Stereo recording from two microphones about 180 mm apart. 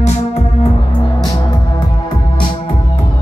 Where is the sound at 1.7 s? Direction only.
25° left (ahead or behind).